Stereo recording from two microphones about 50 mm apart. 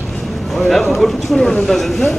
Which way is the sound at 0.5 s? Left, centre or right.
Centre.